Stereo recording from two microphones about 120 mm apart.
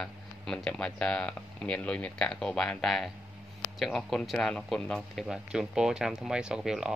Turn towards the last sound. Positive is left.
turn(degrees=-5)  # may be behind; listen again after turning